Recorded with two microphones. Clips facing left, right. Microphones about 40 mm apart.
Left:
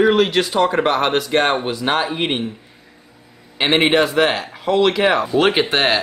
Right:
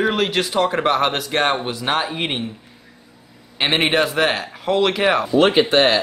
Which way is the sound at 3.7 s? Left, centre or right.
Centre.